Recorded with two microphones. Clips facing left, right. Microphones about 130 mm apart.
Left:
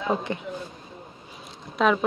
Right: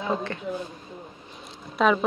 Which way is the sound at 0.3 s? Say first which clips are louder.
Left 4 dB; 15° left (ahead or behind).